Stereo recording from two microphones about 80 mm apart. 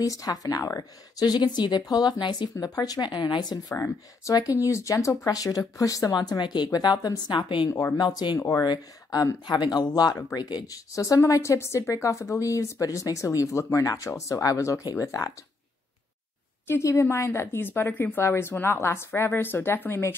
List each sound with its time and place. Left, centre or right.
0.0 s speech: left
2.1 s speech: left
2.6 s a woman's voice: left
3.7 s a woman's voice: left
6.1 s a woman's voice: left
7.3 s a woman's voice: left
8.0 s a woman's voice: left
8.4 s a woman's voice: left
9.5 s speech: left
16.6 s a woman's voice: left